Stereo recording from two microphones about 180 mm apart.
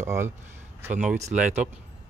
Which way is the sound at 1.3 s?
40° right (ahead or behind).